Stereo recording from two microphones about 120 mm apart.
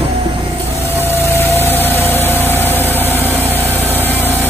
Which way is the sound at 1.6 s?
15° left (ahead or behind).